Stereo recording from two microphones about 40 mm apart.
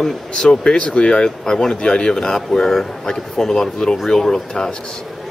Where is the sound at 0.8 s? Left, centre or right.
Left; by 4.4 s centre.